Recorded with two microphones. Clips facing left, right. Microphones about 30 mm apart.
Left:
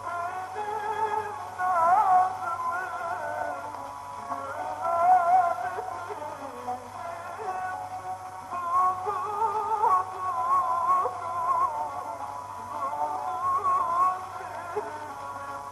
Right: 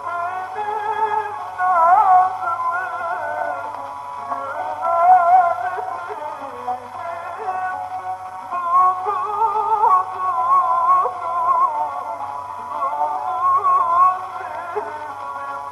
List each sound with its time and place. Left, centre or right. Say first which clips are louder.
0.1 s music: right 8 dB; right
7.4 s music: right 8 dB; right